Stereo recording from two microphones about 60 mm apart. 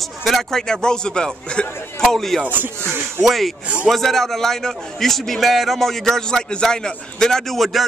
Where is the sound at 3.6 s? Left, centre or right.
Right.